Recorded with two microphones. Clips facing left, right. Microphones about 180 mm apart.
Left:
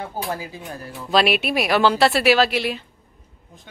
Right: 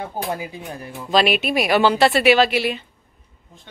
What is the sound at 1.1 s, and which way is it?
Speech, centre (ahead or behind).